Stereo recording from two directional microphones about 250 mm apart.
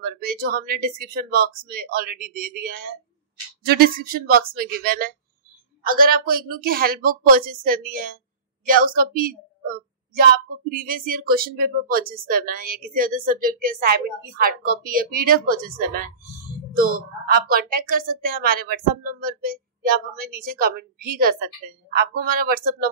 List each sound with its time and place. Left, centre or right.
0.0 s speech: right
16.7 s speech: right